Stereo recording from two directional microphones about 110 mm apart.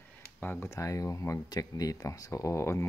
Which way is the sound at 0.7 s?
30° left (ahead or behind).